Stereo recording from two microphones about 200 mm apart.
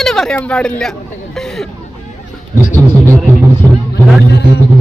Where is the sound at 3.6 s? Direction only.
15° right (ahead or behind).